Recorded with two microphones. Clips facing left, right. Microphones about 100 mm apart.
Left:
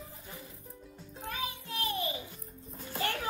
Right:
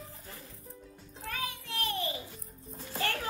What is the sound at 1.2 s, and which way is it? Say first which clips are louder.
Music: even; 25° left (ahead or behind).